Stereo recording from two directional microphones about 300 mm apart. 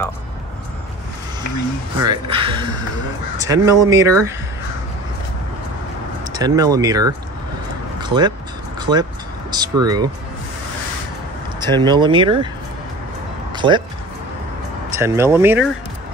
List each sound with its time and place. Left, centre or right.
2.0 s speech: centre
6.2 s speech: centre
8.0 s a sound: centre
8.7 s vehicle: centre
9.5 s speech: centre
11.8 s speech: centre
13.6 s speech: centre
15.0 s speech: centre